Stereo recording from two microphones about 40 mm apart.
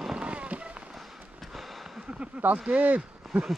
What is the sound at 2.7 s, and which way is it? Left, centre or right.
Speech, right.